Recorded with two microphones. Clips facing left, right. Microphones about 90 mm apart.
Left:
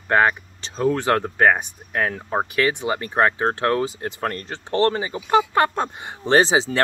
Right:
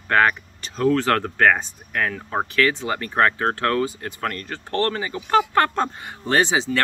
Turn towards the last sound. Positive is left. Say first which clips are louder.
# left 3 dB
turn(degrees=25)  # may be behind; listen again after turning